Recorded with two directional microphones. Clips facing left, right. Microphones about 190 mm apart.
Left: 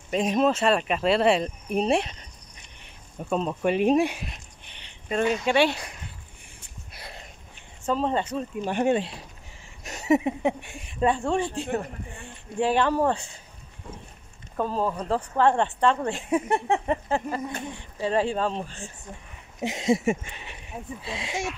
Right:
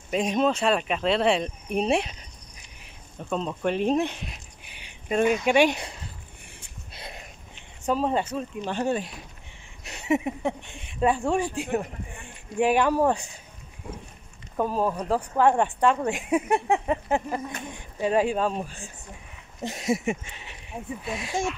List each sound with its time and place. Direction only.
0.1 s speech: centre (ahead or behind)
3.3 s speech: 10° left (ahead or behind)
4.3 s a sound: 10° right (ahead or behind)
6.9 s a sound: 20° right (ahead or behind)
7.8 s speech: 10° right (ahead or behind)
8.6 s speech: 20° left (ahead or behind)
9.8 s a sound: 40° left (ahead or behind)
10.4 s speech: 10° left (ahead or behind); by 17.0 s 10° right (ahead or behind)
17.5 s speech: 30° left (ahead or behind)
18.0 s speech: 10° right (ahead or behind)
19.6 s speech: 15° left (ahead or behind)
20.1 s speech: 55° left (ahead or behind)
21.1 s speech: 25° left (ahead or behind)